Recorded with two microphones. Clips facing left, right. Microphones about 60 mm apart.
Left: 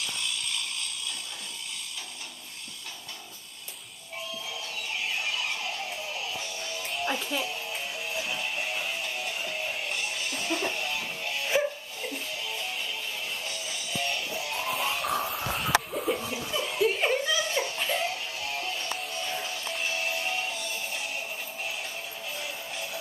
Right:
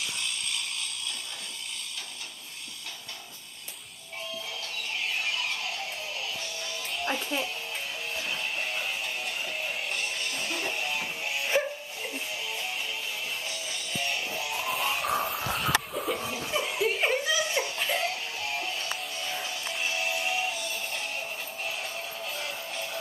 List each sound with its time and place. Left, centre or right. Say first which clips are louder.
6.9 s music: even; centre
7.4 s music: left 1 dB; centre
13.5 s music: even; centre
14.5 s a sound: even; centre
16.3 s chuckle: left 1 dB; centre
17.7 s music: even; centre
19.9 s music: right 2 dB; centre
22.2 s music: even; centre